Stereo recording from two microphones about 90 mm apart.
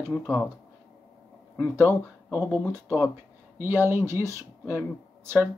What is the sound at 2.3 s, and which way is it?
Speech, 30° left (ahead or behind).